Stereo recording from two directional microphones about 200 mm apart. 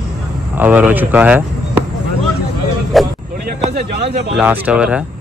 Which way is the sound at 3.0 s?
Centre (ahead or behind).